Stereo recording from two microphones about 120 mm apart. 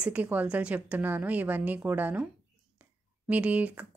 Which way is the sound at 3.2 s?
10° right (ahead or behind).